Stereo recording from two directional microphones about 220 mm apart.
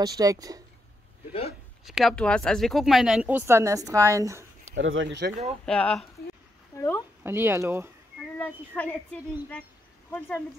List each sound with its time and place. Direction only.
0.0 s speech: 15° right (ahead or behind)
1.9 s speech: centre (ahead or behind)
4.7 s speech: 60° right (ahead or behind)
5.7 s speech: 5° left (ahead or behind)
6.7 s a sound: 10° left (ahead or behind)
7.2 s speech: 10° right (ahead or behind)
8.4 s speech: 5° left (ahead or behind)